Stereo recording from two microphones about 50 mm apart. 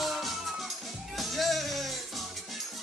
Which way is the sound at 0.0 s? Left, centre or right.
Centre.